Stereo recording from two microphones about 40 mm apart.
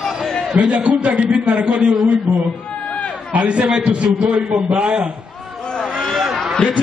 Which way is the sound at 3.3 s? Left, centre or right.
Right.